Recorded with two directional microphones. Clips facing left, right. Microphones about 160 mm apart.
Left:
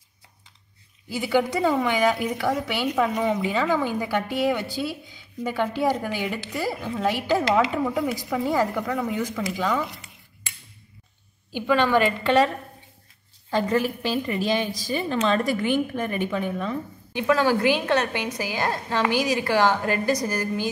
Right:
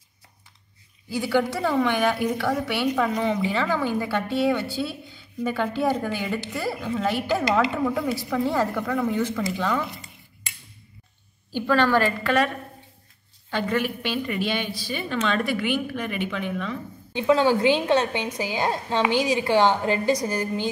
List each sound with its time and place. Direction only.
1.2 s a woman's voice: 15° left (ahead or behind)
11.5 s a woman's voice: 15° left (ahead or behind)
12.2 s a woman's voice: 25° left (ahead or behind)
13.5 s a woman's voice: 40° left (ahead or behind)
17.1 s a woman's voice: 20° right (ahead or behind)